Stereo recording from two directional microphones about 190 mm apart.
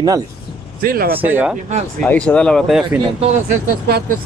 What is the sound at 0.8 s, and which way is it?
Speech, 50° right (ahead or behind).